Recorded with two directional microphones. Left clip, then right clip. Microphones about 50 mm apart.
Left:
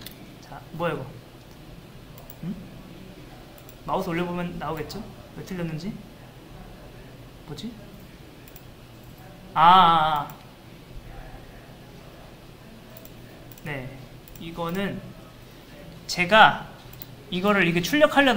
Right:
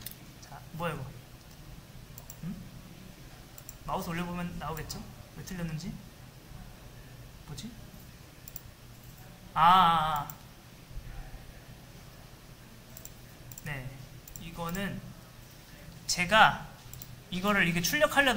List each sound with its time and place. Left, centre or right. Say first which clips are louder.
0.0 s a sound: left 6 dB; right
2.4 s speech: left 7 dB; right
3.8 s speech: left 8 dB; right
9.5 s speech: left 7 dB; right
13.6 s speech: left 7 dB; right
16.1 s speech: left 7 dB; right